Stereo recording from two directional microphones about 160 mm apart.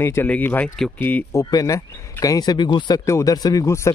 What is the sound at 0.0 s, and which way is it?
Speech, 15° left (ahead or behind).